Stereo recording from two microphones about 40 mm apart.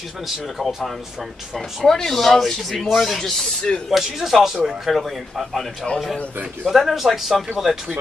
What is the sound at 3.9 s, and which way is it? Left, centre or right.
A man's voice, centre.